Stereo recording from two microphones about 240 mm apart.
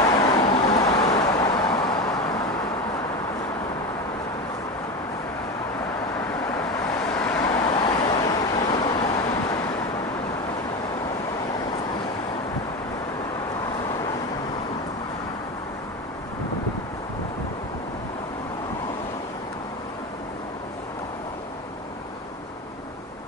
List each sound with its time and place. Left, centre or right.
0.1 s vehicle: centre
7.0 s vehicle: centre
7.4 s vehicle: centre